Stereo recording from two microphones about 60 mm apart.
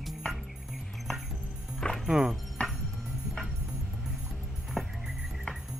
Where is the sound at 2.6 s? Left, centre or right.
Left.